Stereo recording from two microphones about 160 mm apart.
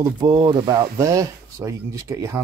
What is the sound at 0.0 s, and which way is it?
Speech, 25° right (ahead or behind).